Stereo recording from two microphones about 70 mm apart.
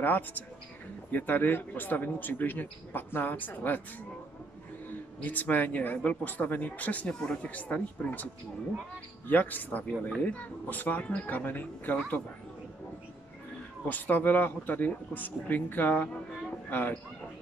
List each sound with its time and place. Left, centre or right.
0.0 s speech: left
5.2 s speech: left
7.2 s speech: centre
7.5 s speech: left
9.3 s speech: left
13.8 s speech: left